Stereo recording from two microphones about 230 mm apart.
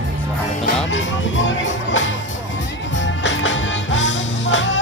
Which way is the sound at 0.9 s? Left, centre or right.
Left.